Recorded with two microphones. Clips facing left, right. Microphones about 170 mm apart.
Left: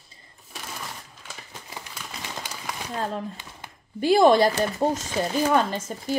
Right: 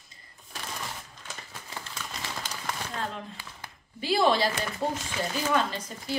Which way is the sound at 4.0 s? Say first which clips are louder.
Left 7 dB; 50° left (ahead or behind).